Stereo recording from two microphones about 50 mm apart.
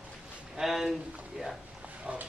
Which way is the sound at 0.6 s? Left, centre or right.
Centre.